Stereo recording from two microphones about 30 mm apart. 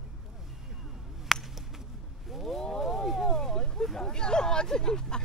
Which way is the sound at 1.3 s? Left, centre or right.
Centre.